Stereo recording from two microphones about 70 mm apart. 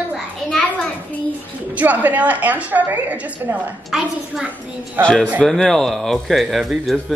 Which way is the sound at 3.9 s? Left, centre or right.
Centre.